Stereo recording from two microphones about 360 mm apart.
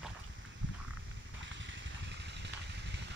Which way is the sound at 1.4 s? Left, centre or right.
Right.